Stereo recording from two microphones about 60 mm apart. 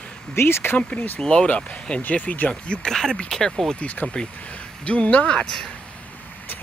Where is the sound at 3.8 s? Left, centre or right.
Left.